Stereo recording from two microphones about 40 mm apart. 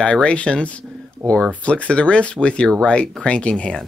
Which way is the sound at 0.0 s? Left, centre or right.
Left.